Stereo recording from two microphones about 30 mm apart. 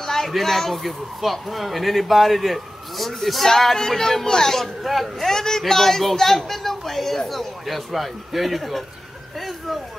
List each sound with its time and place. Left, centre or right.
0.0 s a sound: centre
0.3 s a woman's voice: centre
4.8 s speech: centre
5.2 s a woman's voice: centre